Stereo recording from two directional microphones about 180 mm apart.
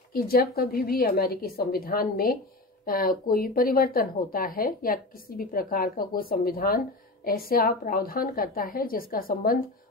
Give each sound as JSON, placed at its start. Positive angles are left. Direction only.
{"t": 0.1, "sound": "a woman's voice", "side_deg": 55}